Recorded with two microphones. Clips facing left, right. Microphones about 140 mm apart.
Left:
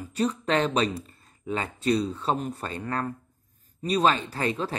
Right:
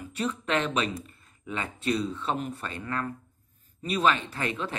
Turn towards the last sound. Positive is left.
turn(degrees=35)  # may be behind; listen again after turning